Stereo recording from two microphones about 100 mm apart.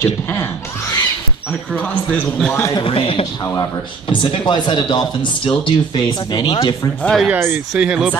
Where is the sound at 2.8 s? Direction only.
65° left (ahead or behind).